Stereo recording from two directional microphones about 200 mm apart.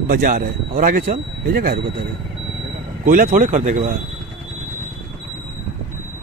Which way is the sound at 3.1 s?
40° right (ahead or behind).